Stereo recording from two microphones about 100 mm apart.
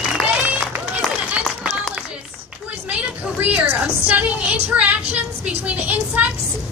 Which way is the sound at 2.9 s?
15° right (ahead or behind).